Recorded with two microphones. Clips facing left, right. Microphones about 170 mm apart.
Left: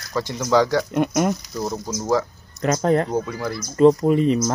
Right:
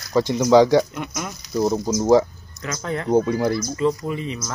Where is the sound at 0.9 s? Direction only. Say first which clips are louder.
Left 10 dB; 45° left (ahead or behind).